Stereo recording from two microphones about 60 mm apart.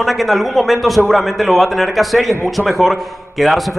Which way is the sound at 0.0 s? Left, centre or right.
Centre.